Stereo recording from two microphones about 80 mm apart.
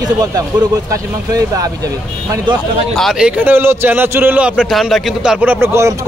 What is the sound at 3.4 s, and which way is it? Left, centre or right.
A man's voice, right.